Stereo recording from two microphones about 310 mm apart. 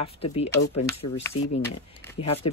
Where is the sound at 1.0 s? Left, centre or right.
Left.